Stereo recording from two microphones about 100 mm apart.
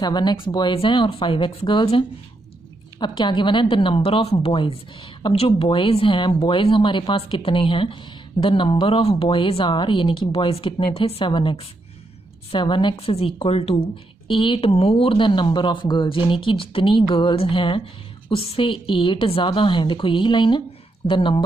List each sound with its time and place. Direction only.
0.0 s speech: 45° left (ahead or behind); by 1.7 s 70° left (ahead or behind)
3.0 s speech: 50° left (ahead or behind)
3.7 s speech: 60° left (ahead or behind)
12.5 s speech: 55° left (ahead or behind)
12.9 s a woman's voice: 75° left (ahead or behind)
14.2 s speech: 55° left (ahead or behind)
14.7 s speech: 80° left; by 17.8 s 60° left (ahead or behind)
18.3 s speech: 70° left (ahead or behind); by 21.5 s 55° left (ahead or behind)